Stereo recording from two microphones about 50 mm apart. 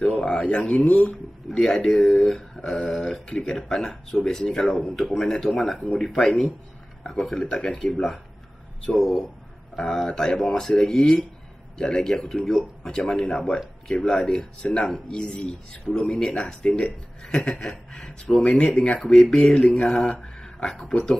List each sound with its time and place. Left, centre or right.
0.0 s speech: left; by 3.2 s centre
3.3 s speech: centre
9.8 s speech: centre